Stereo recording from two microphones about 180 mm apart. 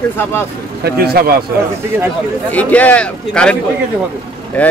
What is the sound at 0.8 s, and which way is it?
Speech, 55° right (ahead or behind).